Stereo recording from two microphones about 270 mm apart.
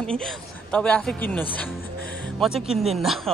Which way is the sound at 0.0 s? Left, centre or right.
Centre.